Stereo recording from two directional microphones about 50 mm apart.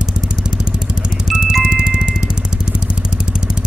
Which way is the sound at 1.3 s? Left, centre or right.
Centre.